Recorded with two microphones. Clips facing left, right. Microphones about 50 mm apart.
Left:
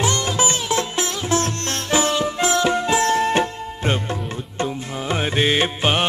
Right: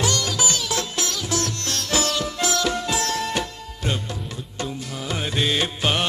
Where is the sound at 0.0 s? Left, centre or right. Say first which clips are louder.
Left 3 dB; left.